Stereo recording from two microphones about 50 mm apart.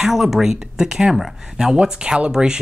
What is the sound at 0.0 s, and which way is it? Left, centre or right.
Speech, centre.